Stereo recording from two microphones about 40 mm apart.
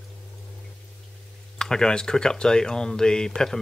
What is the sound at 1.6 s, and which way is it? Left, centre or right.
Speech, centre.